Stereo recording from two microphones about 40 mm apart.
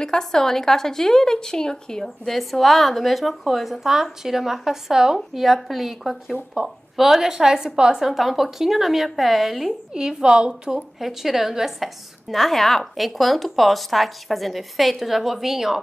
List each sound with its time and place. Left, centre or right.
0.0 s a woman's voice: centre
2.3 s a woman's voice: centre
8.0 s a woman's voice: centre
9.9 s a woman's voice: right
11.0 s a woman's voice: centre